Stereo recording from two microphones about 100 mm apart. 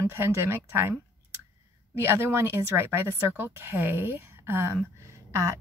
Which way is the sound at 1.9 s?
25° right (ahead or behind).